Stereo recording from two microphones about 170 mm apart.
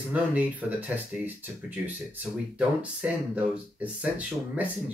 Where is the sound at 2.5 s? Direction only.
10° right (ahead or behind).